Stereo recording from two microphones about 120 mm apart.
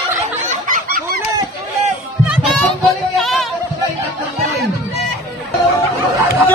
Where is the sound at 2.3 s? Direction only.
Centre (ahead or behind).